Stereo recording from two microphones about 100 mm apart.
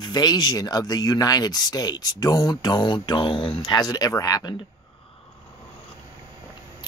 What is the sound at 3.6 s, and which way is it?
Speech, 40° left (ahead or behind).